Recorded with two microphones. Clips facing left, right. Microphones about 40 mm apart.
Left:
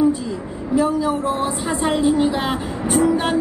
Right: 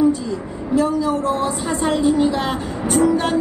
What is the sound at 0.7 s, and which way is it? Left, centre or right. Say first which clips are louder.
Speech: even; centre.